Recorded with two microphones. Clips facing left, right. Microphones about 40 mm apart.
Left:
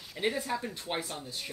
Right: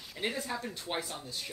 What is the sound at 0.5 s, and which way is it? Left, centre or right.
Speech, centre.